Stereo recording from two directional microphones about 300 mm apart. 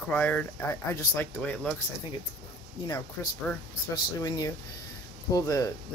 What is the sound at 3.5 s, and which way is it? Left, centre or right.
Speech, centre.